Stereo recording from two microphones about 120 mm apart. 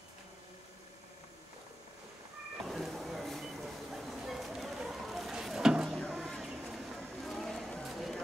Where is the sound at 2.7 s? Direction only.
Centre (ahead or behind).